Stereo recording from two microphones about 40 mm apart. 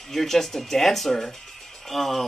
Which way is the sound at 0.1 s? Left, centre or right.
Centre.